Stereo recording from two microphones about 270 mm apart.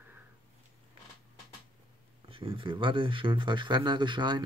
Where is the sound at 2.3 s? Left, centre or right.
Centre.